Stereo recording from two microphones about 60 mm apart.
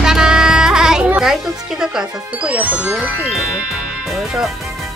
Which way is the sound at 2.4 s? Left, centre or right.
Right.